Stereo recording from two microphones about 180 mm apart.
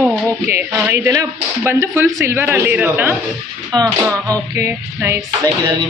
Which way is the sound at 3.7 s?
20° right (ahead or behind).